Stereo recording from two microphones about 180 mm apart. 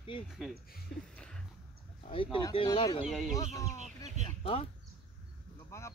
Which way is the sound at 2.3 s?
25° left (ahead or behind).